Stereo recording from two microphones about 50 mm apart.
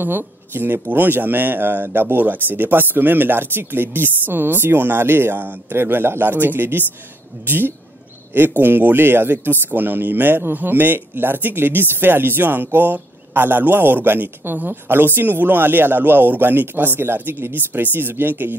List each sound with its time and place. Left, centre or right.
0.0 s speech: right